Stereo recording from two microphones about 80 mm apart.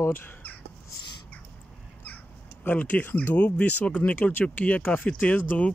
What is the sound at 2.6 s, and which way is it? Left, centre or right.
Speech, left.